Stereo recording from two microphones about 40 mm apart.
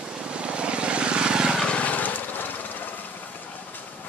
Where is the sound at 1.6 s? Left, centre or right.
Left.